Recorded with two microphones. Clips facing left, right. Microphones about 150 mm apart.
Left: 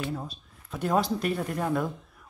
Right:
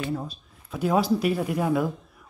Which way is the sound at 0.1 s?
Centre (ahead or behind).